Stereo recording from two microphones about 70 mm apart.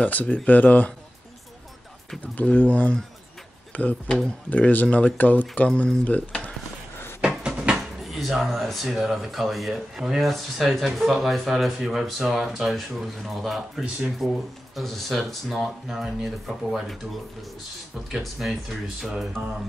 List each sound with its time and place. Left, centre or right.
0.0 s speech: left
2.3 s speech: left
5.7 s speech: centre
6.0 s speech: left
7.2 s a sound: centre
8.0 s speech: centre
18.1 s speech: centre